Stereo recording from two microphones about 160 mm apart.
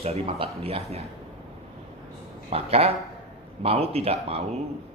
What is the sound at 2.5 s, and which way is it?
Speech, 40° right (ahead or behind).